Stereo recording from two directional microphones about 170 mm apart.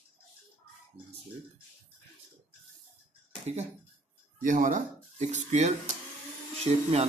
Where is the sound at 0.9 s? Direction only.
35° right (ahead or behind).